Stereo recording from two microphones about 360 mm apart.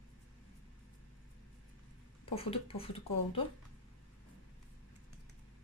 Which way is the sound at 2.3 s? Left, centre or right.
Centre.